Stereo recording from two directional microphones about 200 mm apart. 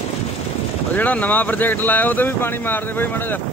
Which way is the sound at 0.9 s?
10° left (ahead or behind).